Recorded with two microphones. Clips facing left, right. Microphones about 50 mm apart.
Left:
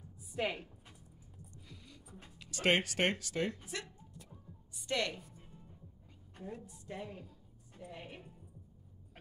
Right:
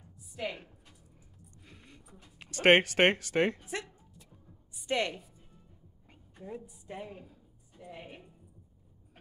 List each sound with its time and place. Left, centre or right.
0.3 s a woman's voice: left
1.5 s a sound: right
2.3 s speech: right
3.6 s a woman's voice: right
6.4 s a woman's voice: centre